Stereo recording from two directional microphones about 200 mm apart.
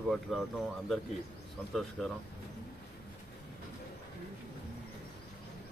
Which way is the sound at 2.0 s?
Centre (ahead or behind).